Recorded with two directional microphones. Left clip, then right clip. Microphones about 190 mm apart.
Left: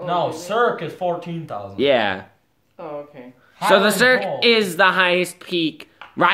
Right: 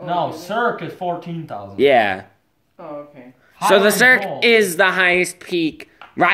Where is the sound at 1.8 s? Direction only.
Centre (ahead or behind).